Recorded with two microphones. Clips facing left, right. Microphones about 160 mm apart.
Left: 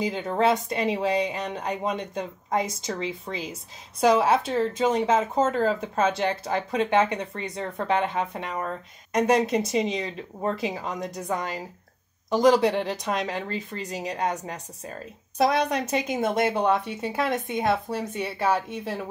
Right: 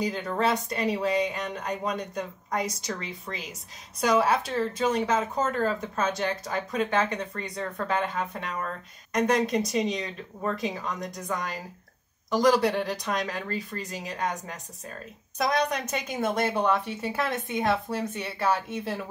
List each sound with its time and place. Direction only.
0.0 s speech: 25° left (ahead or behind)
11.2 s a woman's voice: 15° left (ahead or behind)